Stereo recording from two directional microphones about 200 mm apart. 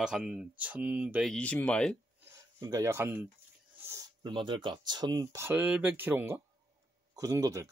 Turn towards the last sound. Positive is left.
turn(degrees=-15)  # may be behind; listen again after turning